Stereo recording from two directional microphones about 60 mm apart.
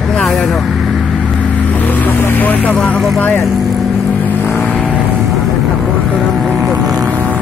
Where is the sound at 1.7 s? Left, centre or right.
Left.